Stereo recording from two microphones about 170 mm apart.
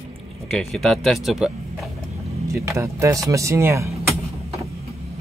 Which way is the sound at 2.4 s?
15° right (ahead or behind).